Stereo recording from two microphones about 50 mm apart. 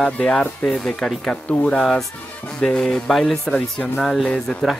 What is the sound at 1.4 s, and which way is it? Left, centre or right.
Speech, left.